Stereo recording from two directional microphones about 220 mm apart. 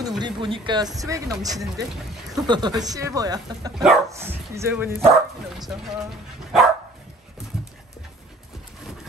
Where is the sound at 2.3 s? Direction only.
20° right (ahead or behind).